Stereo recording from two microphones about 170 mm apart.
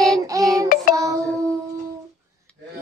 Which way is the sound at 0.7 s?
55° left (ahead or behind).